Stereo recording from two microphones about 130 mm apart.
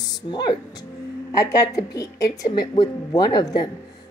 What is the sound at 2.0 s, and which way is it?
Speech, 25° left (ahead or behind).